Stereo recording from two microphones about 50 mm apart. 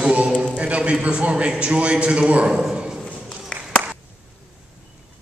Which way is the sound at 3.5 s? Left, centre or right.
Centre.